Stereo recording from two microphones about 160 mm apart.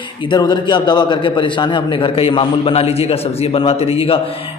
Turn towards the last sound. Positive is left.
turn(degrees=35)  # may be behind; listen again after turning